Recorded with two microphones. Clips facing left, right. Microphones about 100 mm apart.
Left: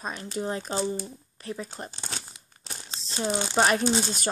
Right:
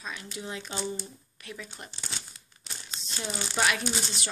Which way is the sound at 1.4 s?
35° left (ahead or behind).